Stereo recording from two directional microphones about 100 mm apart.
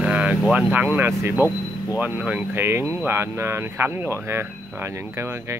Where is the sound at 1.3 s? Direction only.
30° left (ahead or behind).